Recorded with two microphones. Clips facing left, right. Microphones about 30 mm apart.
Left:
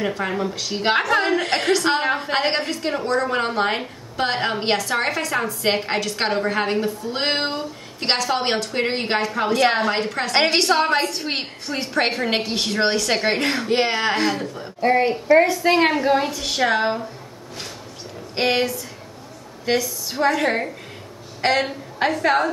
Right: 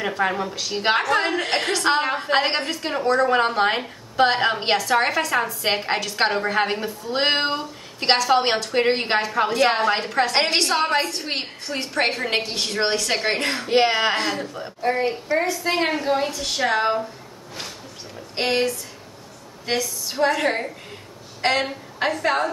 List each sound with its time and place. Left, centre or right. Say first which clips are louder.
0.0 s a woman's voice: even; centre
14.8 s a woman's voice: left 5 dB; left
15.7 s a woman's voice: left 3 dB; centre
18.3 s a woman's voice: left 1 dB; centre